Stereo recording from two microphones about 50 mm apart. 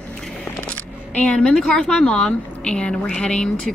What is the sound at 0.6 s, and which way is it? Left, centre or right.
A woman's voice, centre.